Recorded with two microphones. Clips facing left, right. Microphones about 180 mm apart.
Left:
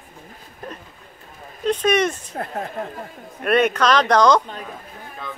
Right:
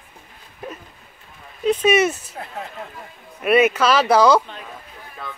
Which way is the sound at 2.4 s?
50° left (ahead or behind).